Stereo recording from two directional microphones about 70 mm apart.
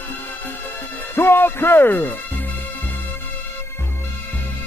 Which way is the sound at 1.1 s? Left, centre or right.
Left.